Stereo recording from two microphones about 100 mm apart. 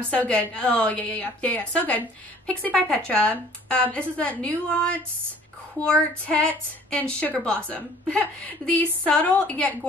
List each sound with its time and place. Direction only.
0.1 s a woman's voice: 15° left (ahead or behind)